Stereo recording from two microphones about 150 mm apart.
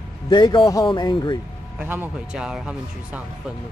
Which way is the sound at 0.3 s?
30° left (ahead or behind).